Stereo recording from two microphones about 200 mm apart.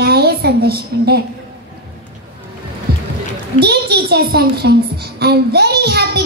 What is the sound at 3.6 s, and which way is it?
A child's voice, 55° right (ahead or behind).